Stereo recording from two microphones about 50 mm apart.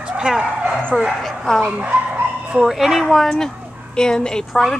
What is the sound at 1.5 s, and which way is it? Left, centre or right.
Speech, centre.